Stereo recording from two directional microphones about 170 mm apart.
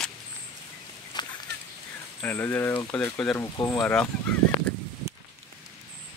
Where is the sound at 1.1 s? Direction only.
25° left (ahead or behind).